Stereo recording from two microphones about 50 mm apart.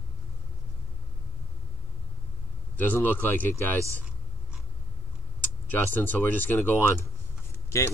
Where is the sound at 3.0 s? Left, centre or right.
Left.